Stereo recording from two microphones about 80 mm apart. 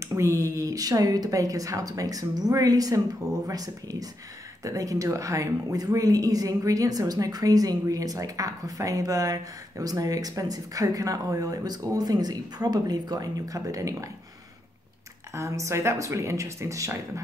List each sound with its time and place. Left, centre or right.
0.0 s speech: right
15.3 s speech: right